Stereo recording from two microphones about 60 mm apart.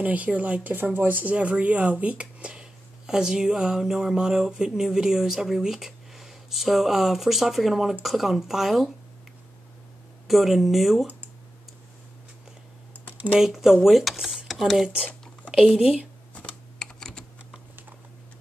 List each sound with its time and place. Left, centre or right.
0.0 s speech: right; by 8.9 s centre
10.2 s speech: centre
13.4 s speech: centre
16.3 s typing: centre